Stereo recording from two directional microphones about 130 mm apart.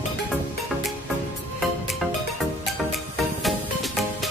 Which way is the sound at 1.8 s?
Centre (ahead or behind).